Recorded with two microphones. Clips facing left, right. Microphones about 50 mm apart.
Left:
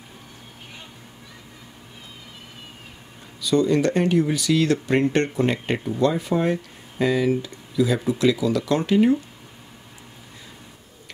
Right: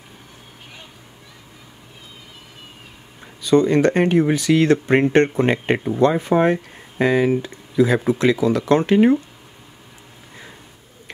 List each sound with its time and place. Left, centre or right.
3.3 s speech: right